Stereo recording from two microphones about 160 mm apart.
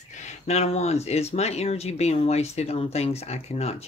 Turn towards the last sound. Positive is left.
turn(degrees=40)  # may be behind; listen again after turning